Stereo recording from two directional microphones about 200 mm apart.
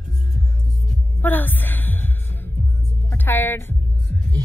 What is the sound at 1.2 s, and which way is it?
Music, 10° left (ahead or behind).